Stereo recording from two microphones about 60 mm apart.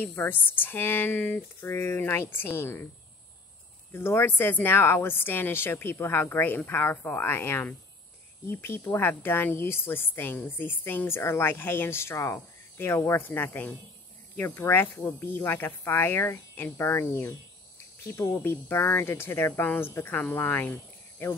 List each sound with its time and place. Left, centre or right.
0.1 s speech: left
1.6 s speech: left
3.9 s speech: left
14.4 s speech: left
19.6 s speech: left